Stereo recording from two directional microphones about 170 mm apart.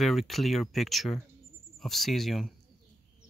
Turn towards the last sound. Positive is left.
turn(degrees=0)  # may be behind; listen again after turning